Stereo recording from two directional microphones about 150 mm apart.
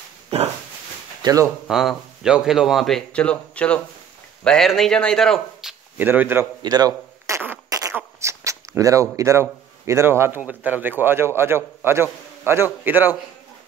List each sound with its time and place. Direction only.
0.3 s a sound: 45° right (ahead or behind)
1.2 s speech: 20° right (ahead or behind)
1.7 s speech: 5° right (ahead or behind)
5.9 s a man's voice: 15° right (ahead or behind)
6.6 s fart: 25° right (ahead or behind)
7.9 s speech: 20° right (ahead or behind)